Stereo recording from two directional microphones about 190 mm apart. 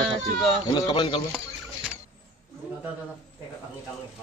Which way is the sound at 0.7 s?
20° left (ahead or behind).